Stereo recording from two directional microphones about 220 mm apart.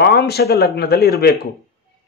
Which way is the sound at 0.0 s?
45° left (ahead or behind).